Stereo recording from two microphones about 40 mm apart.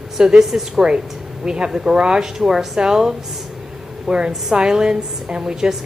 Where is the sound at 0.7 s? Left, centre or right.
Centre.